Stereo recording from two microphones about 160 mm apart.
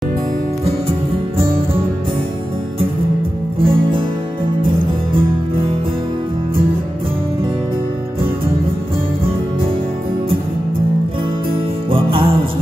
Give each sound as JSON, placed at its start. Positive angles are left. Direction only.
{"t": 3.6, "sound": "music", "side_deg": -30}
{"t": 11.9, "sound": "music", "side_deg": -35}